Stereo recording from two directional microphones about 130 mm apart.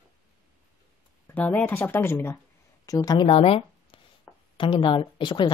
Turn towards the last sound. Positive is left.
turn(degrees=35)  # may be behind; listen again after turning